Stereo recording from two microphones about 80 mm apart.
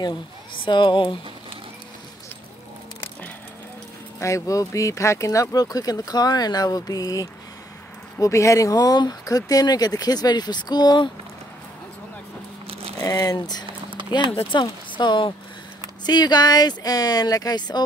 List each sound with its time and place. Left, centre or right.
0.7 s speech: left
4.2 s speech: left
13.0 s speech: left
14.1 s speech: left
15.8 s speech: left